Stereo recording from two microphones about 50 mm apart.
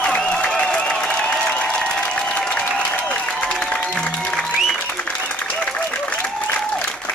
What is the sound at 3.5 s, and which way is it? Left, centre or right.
Music, centre.